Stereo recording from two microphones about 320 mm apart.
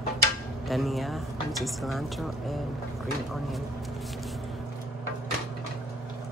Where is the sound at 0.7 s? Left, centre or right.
Centre.